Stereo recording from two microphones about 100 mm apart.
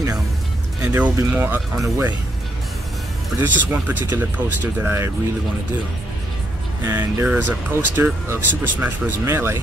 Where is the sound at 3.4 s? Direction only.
20° right (ahead or behind).